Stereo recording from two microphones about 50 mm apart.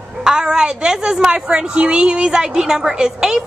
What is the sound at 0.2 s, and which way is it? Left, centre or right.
A woman's voice, centre.